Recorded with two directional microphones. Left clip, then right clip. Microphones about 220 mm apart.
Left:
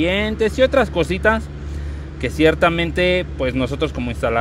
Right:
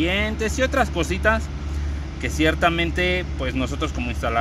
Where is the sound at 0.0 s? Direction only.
35° left (ahead or behind).